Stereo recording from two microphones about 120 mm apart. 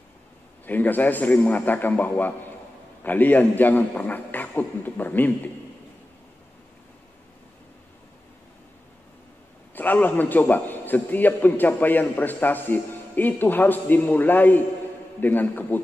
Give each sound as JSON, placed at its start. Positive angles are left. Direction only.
{"t": 0.7, "sound": "a man's voice", "side_deg": 15}
{"t": 9.8, "sound": "a man's voice", "side_deg": 15}